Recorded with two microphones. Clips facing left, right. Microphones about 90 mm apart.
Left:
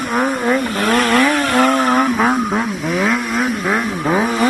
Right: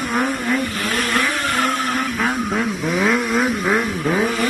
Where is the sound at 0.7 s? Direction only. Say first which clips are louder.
Left 7 dB; 70° left (ahead or behind).